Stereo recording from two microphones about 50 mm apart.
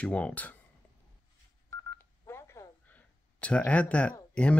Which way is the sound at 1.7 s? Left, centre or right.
Left.